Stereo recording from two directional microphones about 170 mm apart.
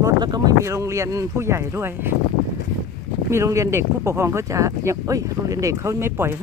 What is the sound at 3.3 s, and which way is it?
Speech, 15° right (ahead or behind).